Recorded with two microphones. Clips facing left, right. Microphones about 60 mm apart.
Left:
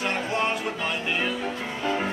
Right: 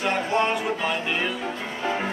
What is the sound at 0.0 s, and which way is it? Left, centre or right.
Music, centre.